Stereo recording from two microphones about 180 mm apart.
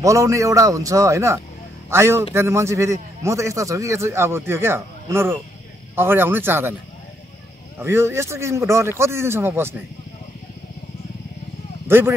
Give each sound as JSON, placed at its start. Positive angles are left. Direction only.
{"t": 0.0, "sound": "a man's voice", "side_deg": -15}
{"t": 7.8, "sound": "a man's voice", "side_deg": -15}
{"t": 11.9, "sound": "speech", "side_deg": -10}